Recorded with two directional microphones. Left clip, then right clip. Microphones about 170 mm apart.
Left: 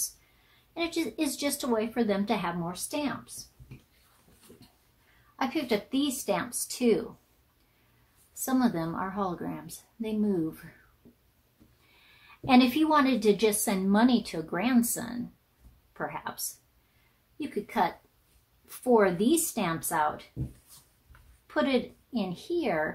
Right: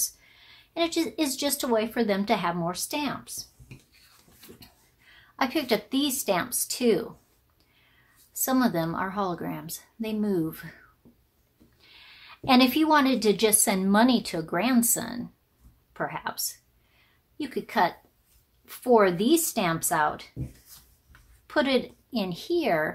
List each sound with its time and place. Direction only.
0.7 s a woman's voice: 25° right (ahead or behind)
5.3 s a woman's voice: 30° right (ahead or behind)
8.3 s a woman's voice: 25° right (ahead or behind)
12.4 s a woman's voice: 25° right (ahead or behind)
17.4 s a woman's voice: 25° right (ahead or behind)
21.5 s a woman's voice: 25° right (ahead or behind)